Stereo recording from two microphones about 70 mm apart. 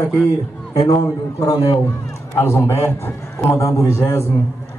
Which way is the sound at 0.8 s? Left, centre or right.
Left.